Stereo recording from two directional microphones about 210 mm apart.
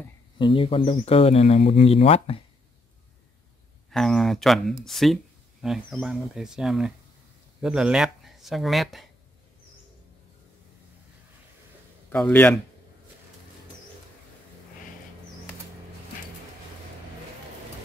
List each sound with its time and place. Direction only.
0.4 s speech: 25° left (ahead or behind)
3.9 s speech: centre (ahead or behind)
12.1 s speech: 10° left (ahead or behind)